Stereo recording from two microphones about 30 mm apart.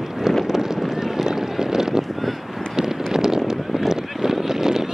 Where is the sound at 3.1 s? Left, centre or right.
Centre.